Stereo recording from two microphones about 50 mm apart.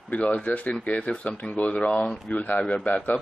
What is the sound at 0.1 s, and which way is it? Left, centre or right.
Speech, left.